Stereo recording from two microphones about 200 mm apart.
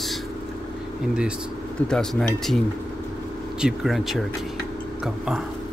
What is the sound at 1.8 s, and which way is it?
Speech, 5° left (ahead or behind).